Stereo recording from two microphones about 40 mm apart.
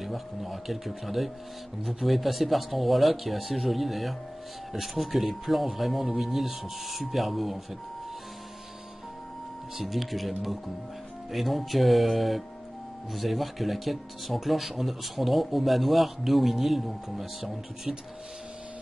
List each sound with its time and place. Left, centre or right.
0.0 s speech: centre
9.8 s speech: centre